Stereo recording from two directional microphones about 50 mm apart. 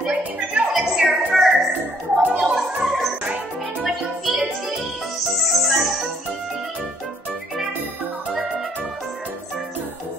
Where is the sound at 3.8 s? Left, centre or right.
Centre.